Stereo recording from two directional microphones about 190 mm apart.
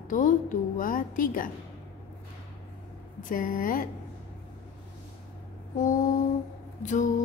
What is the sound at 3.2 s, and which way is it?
Speech, 45° left (ahead or behind).